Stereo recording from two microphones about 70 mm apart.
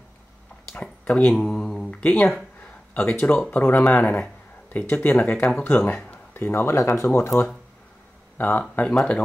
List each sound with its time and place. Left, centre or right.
1.0 s mantra: centre
1.9 s speech: centre
6.3 s speech: left
8.4 s speech: left
8.8 s speech: centre